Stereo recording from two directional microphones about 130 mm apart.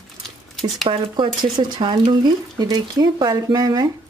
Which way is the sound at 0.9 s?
35° right (ahead or behind).